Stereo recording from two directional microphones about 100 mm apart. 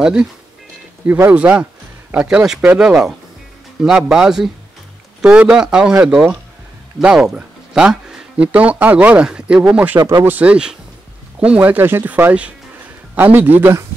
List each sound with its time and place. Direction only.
0.0 s speech: 10° right (ahead or behind)
1.0 s a man's voice: 20° right (ahead or behind)